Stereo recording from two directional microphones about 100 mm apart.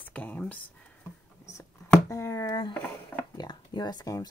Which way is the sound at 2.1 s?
30° left (ahead or behind).